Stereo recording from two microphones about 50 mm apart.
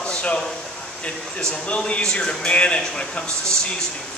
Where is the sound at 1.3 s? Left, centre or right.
Left.